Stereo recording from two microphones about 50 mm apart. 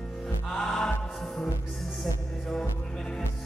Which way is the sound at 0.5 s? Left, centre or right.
Centre.